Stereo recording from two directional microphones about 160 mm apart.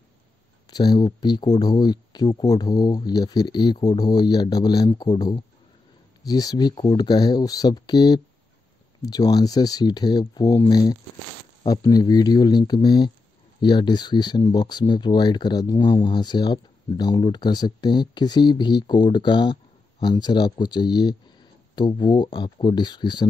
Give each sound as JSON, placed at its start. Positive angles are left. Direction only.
{"t": 0.7, "sound": "speech", "side_deg": 25}